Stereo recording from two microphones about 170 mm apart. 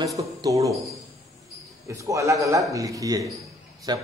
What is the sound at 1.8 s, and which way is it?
A man's voice, 20° right (ahead or behind).